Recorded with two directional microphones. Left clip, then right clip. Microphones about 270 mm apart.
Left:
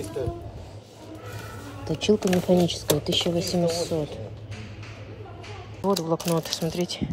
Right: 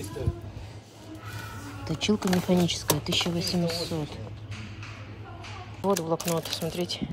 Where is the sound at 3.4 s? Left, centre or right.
Right.